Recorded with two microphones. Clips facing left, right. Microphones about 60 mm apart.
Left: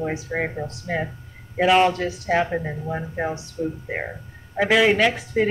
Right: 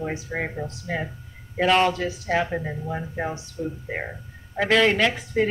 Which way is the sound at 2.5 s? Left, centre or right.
Centre.